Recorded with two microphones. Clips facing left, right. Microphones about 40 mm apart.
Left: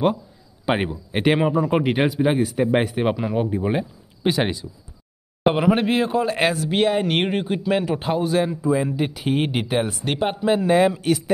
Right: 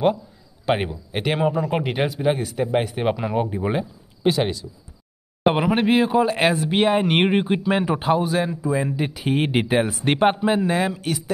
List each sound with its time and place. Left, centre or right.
0.7 s speech: centre
1.5 s speech: centre
4.4 s speech: centre
5.5 s speech: centre
9.5 s speech: centre